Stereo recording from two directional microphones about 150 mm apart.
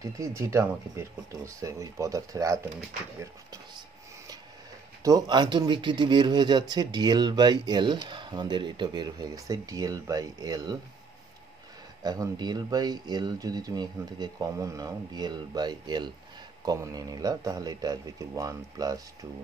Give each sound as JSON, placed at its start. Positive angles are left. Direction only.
{"t": 0.0, "sound": "speech", "side_deg": -20}
{"t": 5.0, "sound": "speech", "side_deg": -25}
{"t": 12.0, "sound": "speech", "side_deg": -25}